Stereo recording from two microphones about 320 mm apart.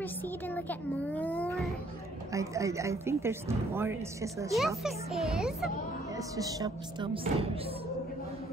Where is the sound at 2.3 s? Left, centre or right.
Centre.